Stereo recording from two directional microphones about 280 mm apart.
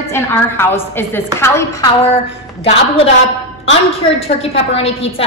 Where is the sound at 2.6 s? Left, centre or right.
Left.